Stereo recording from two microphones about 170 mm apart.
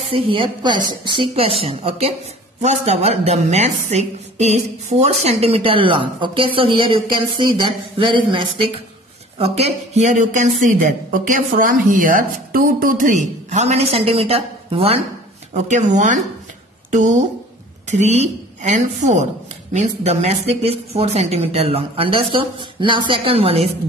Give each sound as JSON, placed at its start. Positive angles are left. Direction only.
{"t": 0.1, "sound": "a woman's voice", "side_deg": -30}
{"t": 17.8, "sound": "a woman's voice", "side_deg": -40}